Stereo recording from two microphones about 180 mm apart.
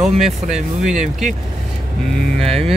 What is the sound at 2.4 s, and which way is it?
Speech, 5° left (ahead or behind).